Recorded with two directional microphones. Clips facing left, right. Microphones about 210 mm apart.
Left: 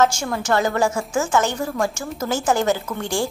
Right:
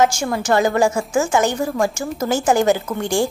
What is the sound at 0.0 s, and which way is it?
A woman's voice, 10° right (ahead or behind).